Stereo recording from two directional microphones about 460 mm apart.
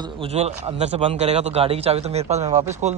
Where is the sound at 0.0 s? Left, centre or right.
Centre.